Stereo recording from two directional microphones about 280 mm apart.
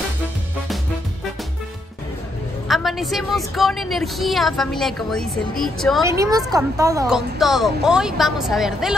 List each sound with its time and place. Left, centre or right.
2.7 s a woman's voice: centre
6.0 s speech: centre
7.2 s a woman's voice: centre